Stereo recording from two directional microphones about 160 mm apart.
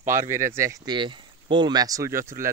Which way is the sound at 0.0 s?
15° right (ahead or behind).